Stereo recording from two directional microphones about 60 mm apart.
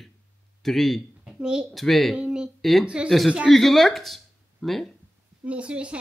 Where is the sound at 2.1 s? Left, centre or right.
Centre.